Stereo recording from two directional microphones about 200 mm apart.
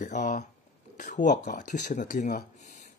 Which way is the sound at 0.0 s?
40° left (ahead or behind).